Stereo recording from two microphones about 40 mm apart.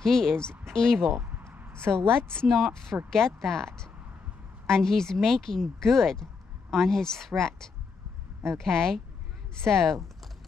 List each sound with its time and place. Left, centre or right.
0.0 s speech: centre
1.2 s a sound: right
1.7 s a woman's voice: right
2.4 s speech: centre